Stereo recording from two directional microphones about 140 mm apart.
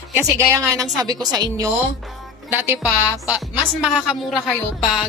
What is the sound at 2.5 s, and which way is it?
A woman's voice, 15° right (ahead or behind).